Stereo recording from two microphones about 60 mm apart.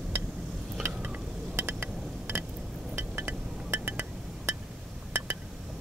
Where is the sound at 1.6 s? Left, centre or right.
Right.